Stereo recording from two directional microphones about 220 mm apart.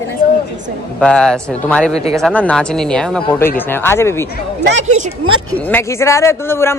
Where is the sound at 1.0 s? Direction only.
5° left (ahead or behind).